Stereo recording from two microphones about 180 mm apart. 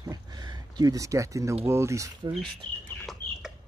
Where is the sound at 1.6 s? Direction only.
15° right (ahead or behind).